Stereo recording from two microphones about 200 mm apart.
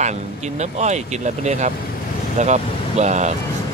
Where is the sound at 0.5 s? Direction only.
35° right (ahead or behind).